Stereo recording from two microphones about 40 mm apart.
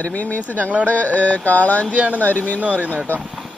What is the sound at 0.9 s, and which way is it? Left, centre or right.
Mantra, left.